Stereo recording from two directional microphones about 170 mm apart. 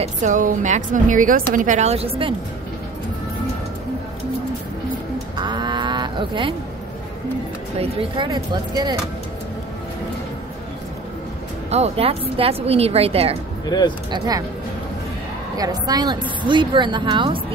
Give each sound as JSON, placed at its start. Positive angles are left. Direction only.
{"t": 0.0, "sound": "a woman's voice", "side_deg": -45}
{"t": 5.4, "sound": "cattle", "side_deg": -25}
{"t": 7.8, "sound": "a woman's voice", "side_deg": -30}
{"t": 11.7, "sound": "speech", "side_deg": -40}
{"t": 13.7, "sound": "speech", "side_deg": 25}
{"t": 14.1, "sound": "a woman's voice", "side_deg": -20}
{"t": 15.5, "sound": "a woman's voice", "side_deg": -20}